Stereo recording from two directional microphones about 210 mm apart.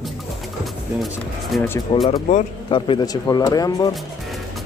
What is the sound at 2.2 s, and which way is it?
Speech, 30° left (ahead or behind).